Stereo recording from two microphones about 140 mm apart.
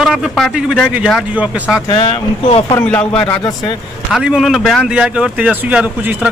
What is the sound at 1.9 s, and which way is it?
Speech, 35° left (ahead or behind).